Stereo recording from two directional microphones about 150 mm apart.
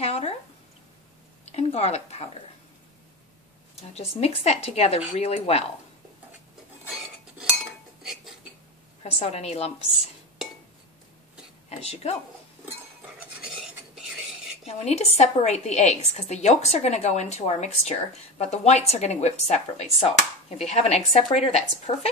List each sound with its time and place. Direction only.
0.0 s a sound: 40° left (ahead or behind)
1.4 s speech: 45° left (ahead or behind)
3.9 s speech: 45° left (ahead or behind)
9.0 s speech: 45° left (ahead or behind)
11.7 s speech: 45° left (ahead or behind)
14.7 s speech: 45° left (ahead or behind)